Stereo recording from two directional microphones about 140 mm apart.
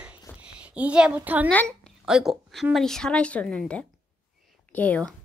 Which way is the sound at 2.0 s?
5° right (ahead or behind).